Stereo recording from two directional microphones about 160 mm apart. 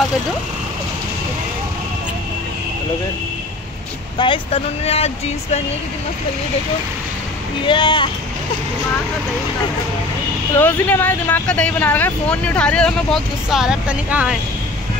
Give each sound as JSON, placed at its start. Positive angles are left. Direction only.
{"t": 4.2, "sound": "speech", "side_deg": 35}
{"t": 7.6, "sound": "speech", "side_deg": 30}
{"t": 10.6, "sound": "speech", "side_deg": 10}